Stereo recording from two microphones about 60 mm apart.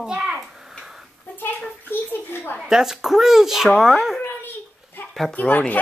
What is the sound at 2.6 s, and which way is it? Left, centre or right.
Speech, centre.